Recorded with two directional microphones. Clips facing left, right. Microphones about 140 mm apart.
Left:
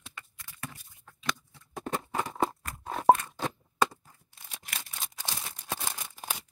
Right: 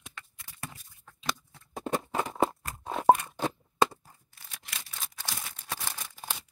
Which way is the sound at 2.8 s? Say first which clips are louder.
Even; 10° right (ahead or behind).